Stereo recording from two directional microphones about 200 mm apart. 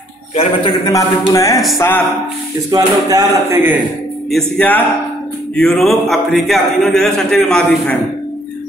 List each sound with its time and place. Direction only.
0.4 s a man's voice: 20° left (ahead or behind)
2.7 s speech: 15° right (ahead or behind)
4.3 s a man's voice: 5° left (ahead or behind)